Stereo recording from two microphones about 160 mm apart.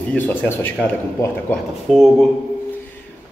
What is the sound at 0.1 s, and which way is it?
Speech, 10° left (ahead or behind).